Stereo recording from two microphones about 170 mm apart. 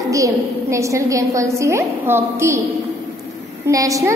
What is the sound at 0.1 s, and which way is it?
A woman's voice, 20° right (ahead or behind).